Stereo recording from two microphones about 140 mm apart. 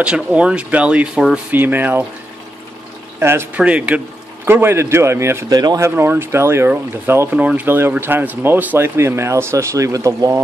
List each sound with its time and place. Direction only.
0.0 s speech: 5° right (ahead or behind)
3.2 s a man's voice: 15° right (ahead or behind)
5.9 s speech: 15° right (ahead or behind)